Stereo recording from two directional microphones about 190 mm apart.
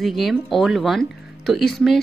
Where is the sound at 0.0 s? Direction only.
Centre (ahead or behind).